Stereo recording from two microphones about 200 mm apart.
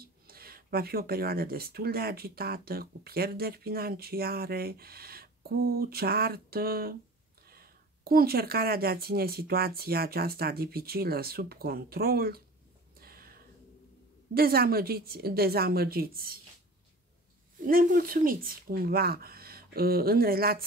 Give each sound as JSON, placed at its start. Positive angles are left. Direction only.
{"t": 0.0, "sound": "speech", "side_deg": -50}
{"t": 13.0, "sound": "a sound", "side_deg": -50}
{"t": 14.3, "sound": "speech", "side_deg": -50}
{"t": 17.6, "sound": "speech", "side_deg": -45}